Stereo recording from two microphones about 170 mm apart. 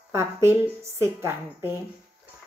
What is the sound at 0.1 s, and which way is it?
A woman's voice, 15° right (ahead or behind).